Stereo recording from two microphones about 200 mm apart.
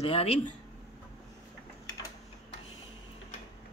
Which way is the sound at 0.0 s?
30° left (ahead or behind).